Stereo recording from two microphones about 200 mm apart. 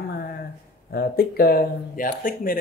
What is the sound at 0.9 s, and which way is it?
A man's voice, 50° left (ahead or behind).